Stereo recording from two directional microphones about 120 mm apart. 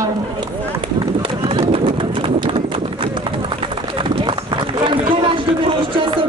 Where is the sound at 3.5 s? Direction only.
45° right (ahead or behind).